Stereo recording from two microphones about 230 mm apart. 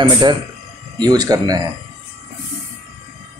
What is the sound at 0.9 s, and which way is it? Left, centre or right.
Speech, centre.